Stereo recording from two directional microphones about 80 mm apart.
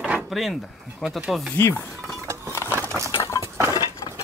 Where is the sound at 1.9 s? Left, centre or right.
Centre.